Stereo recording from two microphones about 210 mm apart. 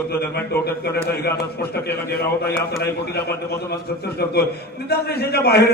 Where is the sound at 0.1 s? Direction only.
50° left (ahead or behind).